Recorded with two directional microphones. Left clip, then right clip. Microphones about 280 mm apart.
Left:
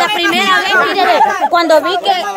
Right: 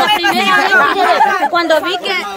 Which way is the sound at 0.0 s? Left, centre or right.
Left.